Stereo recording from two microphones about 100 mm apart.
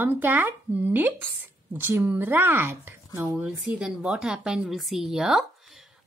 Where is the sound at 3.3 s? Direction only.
10° right (ahead or behind).